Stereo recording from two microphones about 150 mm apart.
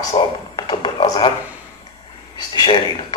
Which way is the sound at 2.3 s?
30° left (ahead or behind).